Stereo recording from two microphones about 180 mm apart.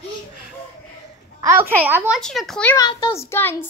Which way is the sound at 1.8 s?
10° right (ahead or behind).